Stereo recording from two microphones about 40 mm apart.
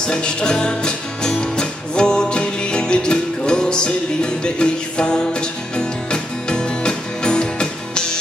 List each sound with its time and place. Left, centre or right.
0.0 s music: left